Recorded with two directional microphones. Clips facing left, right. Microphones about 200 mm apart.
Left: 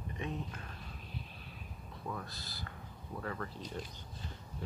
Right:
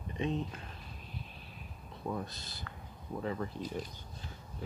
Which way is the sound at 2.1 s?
20° right (ahead or behind).